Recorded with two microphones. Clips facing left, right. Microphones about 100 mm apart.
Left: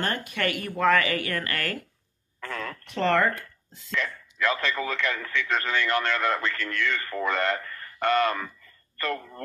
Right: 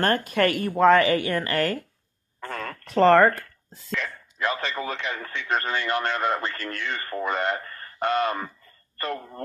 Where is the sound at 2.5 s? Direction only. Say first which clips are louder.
Right 4 dB; 50° right (ahead or behind).